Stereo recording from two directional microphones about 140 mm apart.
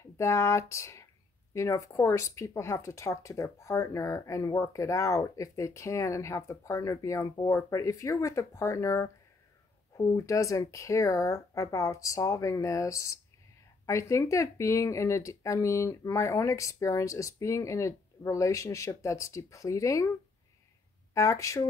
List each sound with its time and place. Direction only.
0.0 s speech: 20° left (ahead or behind)